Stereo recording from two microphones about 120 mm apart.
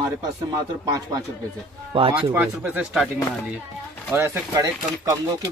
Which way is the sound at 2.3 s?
15° right (ahead or behind).